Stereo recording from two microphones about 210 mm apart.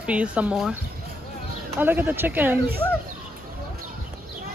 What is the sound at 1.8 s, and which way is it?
Speech, 10° right (ahead or behind).